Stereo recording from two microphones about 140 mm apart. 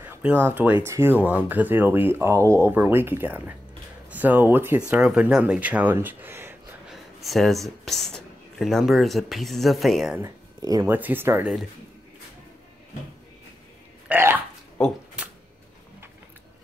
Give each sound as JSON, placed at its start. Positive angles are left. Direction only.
{"t": 0.0, "sound": "speech", "side_deg": -15}
{"t": 6.9, "sound": "speech", "side_deg": 0}
{"t": 10.1, "sound": "speech", "side_deg": -25}
{"t": 10.9, "sound": "speech", "side_deg": -15}
{"t": 14.0, "sound": "speech", "side_deg": -15}